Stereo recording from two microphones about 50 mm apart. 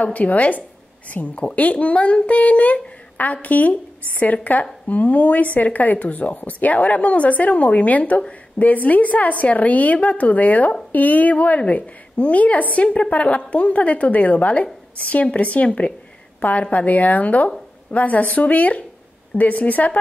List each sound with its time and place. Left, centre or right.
0.0 s a woman's voice: left